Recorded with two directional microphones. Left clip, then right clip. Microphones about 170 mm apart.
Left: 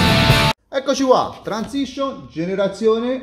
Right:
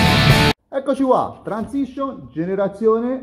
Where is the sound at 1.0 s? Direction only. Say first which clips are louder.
Left 2 dB; 20° left (ahead or behind).